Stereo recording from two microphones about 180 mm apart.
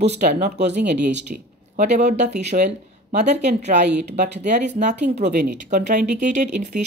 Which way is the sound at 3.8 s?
70° right (ahead or behind).